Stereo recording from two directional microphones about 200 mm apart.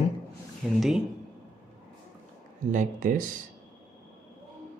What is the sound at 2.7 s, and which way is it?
Speech, 40° right (ahead or behind).